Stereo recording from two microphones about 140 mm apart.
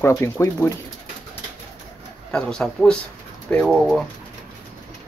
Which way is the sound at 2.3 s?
5° left (ahead or behind).